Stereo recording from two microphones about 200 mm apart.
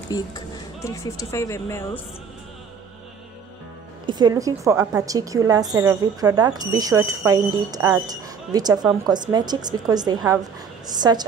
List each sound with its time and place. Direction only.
0.1 s speech: 20° left (ahead or behind)
4.0 s a woman's voice: 20° right (ahead or behind)